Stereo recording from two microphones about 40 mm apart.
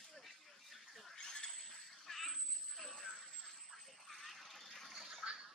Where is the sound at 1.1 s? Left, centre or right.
Centre.